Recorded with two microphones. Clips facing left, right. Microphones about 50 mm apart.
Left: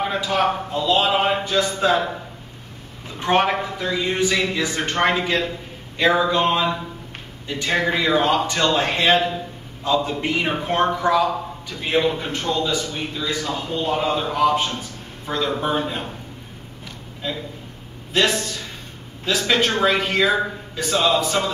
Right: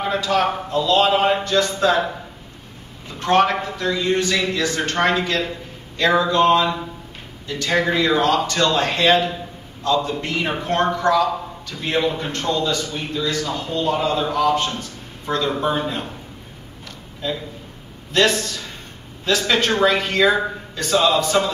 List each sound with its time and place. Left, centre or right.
0.0 s a man's voice: centre
3.2 s a man's voice: centre
16.8 s a sound: centre
18.1 s a man's voice: centre